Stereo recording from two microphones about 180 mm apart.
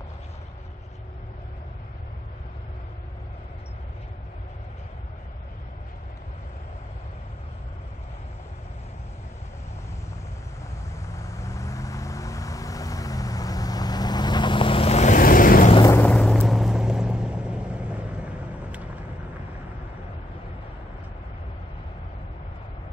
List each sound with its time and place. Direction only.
11.1 s vehicle: 15° left (ahead or behind); by 15.7 s 50° left (ahead or behind)
15.9 s vehicle: 5° left (ahead or behind)